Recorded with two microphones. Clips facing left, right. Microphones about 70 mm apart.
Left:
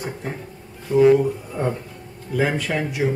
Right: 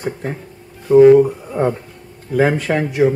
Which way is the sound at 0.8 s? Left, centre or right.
Right.